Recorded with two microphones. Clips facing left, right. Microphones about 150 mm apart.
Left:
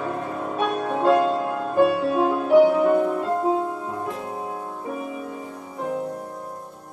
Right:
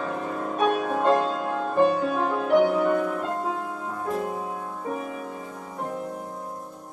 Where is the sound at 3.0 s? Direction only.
20° left (ahead or behind).